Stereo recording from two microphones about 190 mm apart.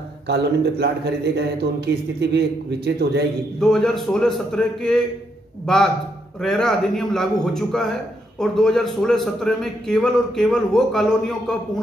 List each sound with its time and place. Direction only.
0.3 s speech: 60° right (ahead or behind)
3.5 s a man's voice: centre (ahead or behind)
6.4 s a man's voice: 5° left (ahead or behind)